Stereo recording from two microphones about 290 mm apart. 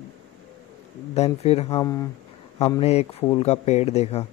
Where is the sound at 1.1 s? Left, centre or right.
Left.